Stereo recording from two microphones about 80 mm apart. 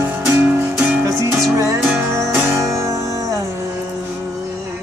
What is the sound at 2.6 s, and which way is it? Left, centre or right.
Music, right.